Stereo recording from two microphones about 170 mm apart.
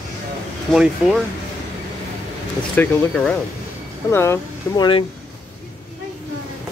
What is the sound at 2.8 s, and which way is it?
Speech, 5° left (ahead or behind).